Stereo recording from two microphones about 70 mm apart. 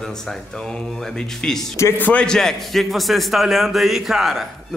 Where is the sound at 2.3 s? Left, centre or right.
Centre.